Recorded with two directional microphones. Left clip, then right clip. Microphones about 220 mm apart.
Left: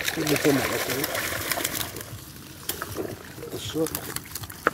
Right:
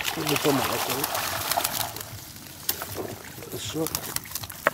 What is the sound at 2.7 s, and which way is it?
Boat, 30° right (ahead or behind).